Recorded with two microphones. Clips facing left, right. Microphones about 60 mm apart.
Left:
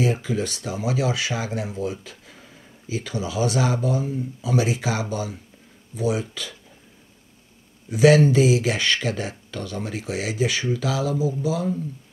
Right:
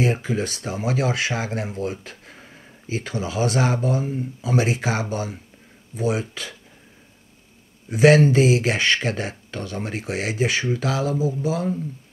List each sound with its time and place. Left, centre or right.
0.0 s speech: right
7.9 s speech: right